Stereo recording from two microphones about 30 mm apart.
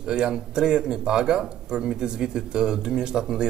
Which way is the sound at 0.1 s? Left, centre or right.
Right.